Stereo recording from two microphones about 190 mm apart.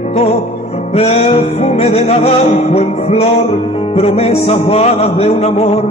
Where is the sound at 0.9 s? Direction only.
35° left (ahead or behind).